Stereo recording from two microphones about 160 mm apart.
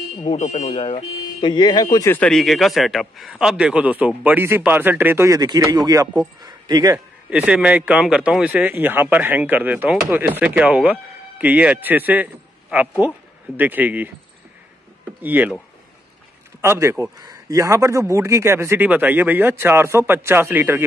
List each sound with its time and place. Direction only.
0.4 s speech: 45° left (ahead or behind); by 2.0 s 25° left (ahead or behind)
2.0 s a man's voice: 10° left (ahead or behind); by 7.0 s 25° right (ahead or behind)
7.2 s speech: 10° right (ahead or behind)
15.2 s speech: 10° right (ahead or behind)
16.6 s speech: 15° right (ahead or behind)